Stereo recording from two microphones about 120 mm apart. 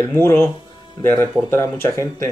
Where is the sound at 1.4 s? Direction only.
20° left (ahead or behind).